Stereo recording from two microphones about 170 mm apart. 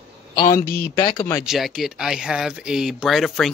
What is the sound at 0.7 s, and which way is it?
Speech, 60° left (ahead or behind).